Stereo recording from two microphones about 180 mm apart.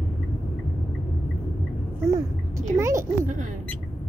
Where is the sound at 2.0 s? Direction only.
15° right (ahead or behind).